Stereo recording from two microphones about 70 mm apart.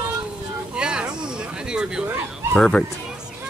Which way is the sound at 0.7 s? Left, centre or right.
Centre.